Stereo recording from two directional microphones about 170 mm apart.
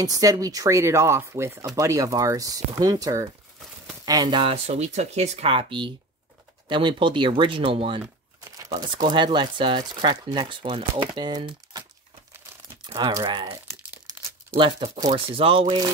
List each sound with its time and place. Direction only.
0.0 s speech: 20° right (ahead or behind)
12.8 s speech: 25° right (ahead or behind)
13.7 s crumpling: 15° right (ahead or behind)
14.6 s speech: 35° right (ahead or behind)